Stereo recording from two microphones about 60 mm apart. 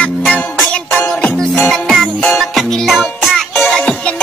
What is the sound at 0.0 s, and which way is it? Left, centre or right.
Music, centre.